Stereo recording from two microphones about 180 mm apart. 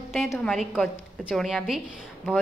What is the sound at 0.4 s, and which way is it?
A woman's voice, centre (ahead or behind).